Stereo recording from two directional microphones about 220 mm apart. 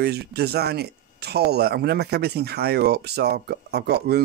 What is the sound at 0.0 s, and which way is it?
Speech, 45° right (ahead or behind).